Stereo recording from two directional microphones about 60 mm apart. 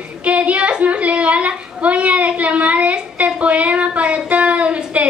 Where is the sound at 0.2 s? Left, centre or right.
Right.